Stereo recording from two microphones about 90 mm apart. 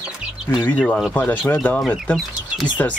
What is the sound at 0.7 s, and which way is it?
Speech, 10° left (ahead or behind).